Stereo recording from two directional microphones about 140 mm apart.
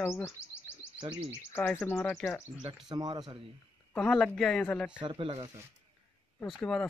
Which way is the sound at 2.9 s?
30° right (ahead or behind).